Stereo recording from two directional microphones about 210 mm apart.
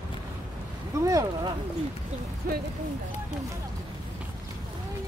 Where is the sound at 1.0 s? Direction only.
15° right (ahead or behind).